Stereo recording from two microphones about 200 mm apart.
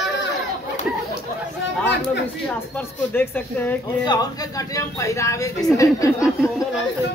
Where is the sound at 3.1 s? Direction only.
10° left (ahead or behind).